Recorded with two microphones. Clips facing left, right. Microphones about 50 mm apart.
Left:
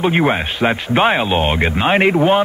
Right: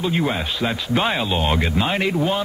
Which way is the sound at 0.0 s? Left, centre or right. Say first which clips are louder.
Left 6 dB; left.